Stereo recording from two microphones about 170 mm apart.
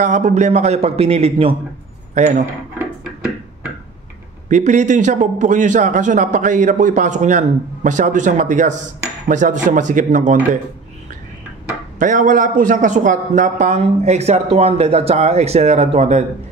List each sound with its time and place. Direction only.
0.0 s a man's voice: 45° right (ahead or behind)
4.5 s a man's voice: 45° right (ahead or behind)
12.0 s a man's voice: 50° right (ahead or behind)